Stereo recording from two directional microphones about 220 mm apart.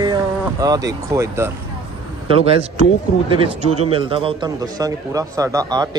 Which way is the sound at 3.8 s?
25° right (ahead or behind).